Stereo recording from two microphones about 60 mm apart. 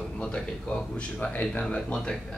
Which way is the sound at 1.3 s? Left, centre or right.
Left.